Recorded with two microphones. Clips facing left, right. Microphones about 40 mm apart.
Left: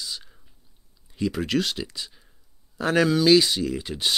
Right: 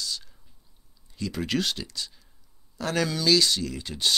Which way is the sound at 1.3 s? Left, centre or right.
Centre.